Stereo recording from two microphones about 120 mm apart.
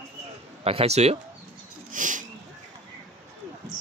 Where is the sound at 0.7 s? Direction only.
60° right (ahead or behind).